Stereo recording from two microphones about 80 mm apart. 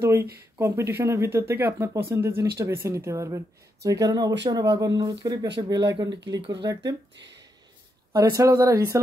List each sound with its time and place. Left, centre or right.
0.0 s speech: right
8.1 s speech: right